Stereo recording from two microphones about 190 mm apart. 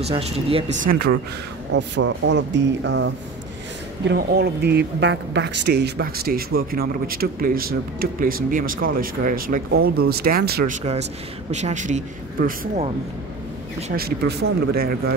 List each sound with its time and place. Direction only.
0.0 s speech: 30° right (ahead or behind); by 1.1 s 50° right (ahead or behind)
1.7 s speech: 70° right (ahead or behind)
4.1 s speech: 60° right (ahead or behind)
10.8 s speech: 35° right (ahead or behind)
13.9 s speech: 55° right (ahead or behind)